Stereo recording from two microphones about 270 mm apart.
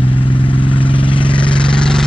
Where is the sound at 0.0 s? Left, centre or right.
Centre.